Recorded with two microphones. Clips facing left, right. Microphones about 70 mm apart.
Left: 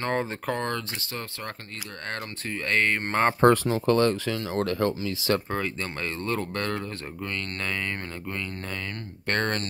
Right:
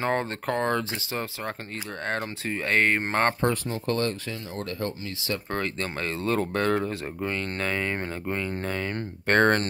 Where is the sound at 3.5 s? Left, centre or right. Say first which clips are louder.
Left 5 dB; left.